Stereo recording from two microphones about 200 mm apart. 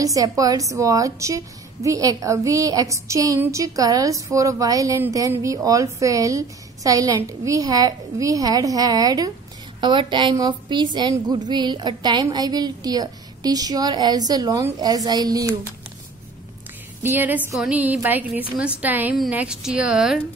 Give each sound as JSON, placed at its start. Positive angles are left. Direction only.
{"t": 0.0, "sound": "a woman's voice", "side_deg": -15}
{"t": 17.0, "sound": "a woman's voice", "side_deg": -10}